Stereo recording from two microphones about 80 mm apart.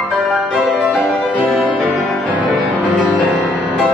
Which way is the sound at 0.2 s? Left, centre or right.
Centre.